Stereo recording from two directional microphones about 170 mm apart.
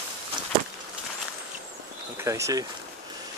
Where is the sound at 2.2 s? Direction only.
15° right (ahead or behind).